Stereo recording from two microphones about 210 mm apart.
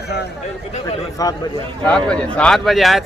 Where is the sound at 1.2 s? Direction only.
15° left (ahead or behind).